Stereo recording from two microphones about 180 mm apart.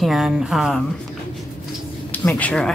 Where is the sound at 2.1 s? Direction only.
10° left (ahead or behind).